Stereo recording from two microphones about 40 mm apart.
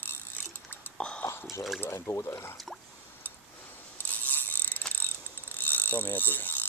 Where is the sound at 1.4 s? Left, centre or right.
Centre.